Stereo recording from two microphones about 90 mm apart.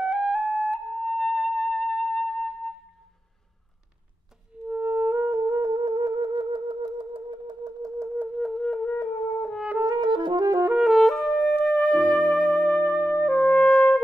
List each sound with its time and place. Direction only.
0.0 s flute: 5° right (ahead or behind)
4.6 s music: 25° right (ahead or behind); by 7.5 s 70° right (ahead or behind)
7.6 s a sound: 40° right (ahead or behind)
8.4 s flute: centre (ahead or behind)
8.8 s wind instrument: 15° left (ahead or behind)
9.9 s music: 55° right (ahead or behind)
10.8 s music: centre (ahead or behind)
12.8 s music: 15° left (ahead or behind)